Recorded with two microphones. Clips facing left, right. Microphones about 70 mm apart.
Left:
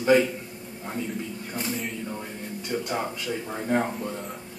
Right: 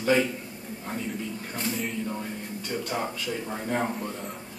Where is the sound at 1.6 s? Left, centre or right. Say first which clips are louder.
Right 2 dB; centre.